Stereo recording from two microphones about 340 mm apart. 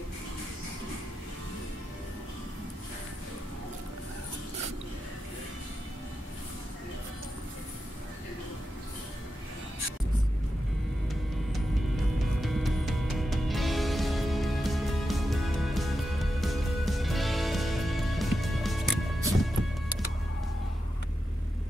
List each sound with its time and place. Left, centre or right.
12.4 s music: centre